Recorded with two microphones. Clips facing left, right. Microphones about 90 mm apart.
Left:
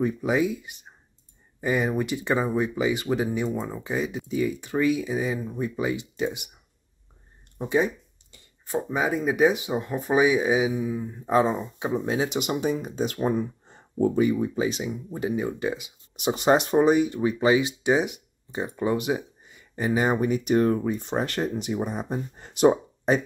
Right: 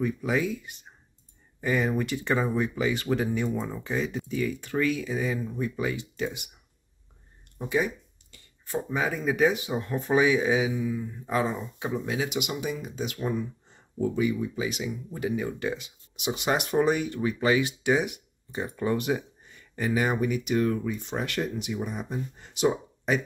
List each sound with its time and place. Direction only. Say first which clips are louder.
0.0 s speech: left 3 dB; 20° left (ahead or behind)
7.5 s a sound: left 3 dB; 25° left (ahead or behind)
8.7 s speech: left 3 dB; 15° left (ahead or behind)
16.2 s speech: left 6 dB; 40° left (ahead or behind); by 19.8 s 15° left (ahead or behind)
19.8 s speech: left 3 dB; 25° left (ahead or behind); by 22.8 s 45° left (ahead or behind)
23.1 s speech: left 4 dB; 35° left (ahead or behind)